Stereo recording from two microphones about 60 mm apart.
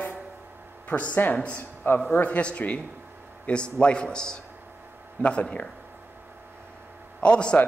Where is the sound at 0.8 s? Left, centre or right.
Left.